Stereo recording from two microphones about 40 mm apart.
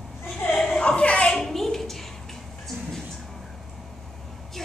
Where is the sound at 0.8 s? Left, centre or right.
Left.